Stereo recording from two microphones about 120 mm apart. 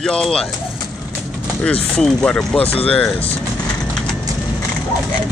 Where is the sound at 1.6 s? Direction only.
5° left (ahead or behind).